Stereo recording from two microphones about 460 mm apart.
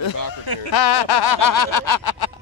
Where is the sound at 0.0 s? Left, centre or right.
Left.